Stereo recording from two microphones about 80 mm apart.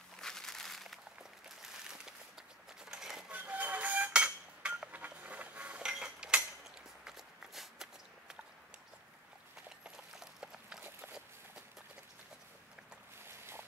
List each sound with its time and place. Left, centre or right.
0.2 s a sound: centre
3.3 s music: centre
7.1 s walk: centre
9.8 s clip-clop: centre
13.2 s boat: right